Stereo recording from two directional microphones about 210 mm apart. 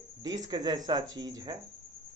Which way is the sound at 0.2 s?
20° right (ahead or behind).